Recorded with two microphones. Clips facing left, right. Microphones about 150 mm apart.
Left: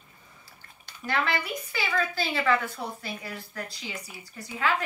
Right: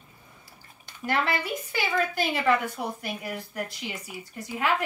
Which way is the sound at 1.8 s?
20° right (ahead or behind).